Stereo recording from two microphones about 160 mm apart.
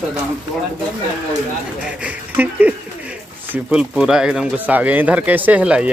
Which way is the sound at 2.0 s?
10° right (ahead or behind).